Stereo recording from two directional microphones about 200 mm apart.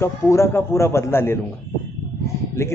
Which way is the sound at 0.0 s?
15° left (ahead or behind).